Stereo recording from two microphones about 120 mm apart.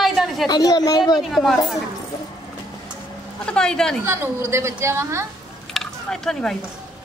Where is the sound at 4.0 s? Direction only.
20° right (ahead or behind).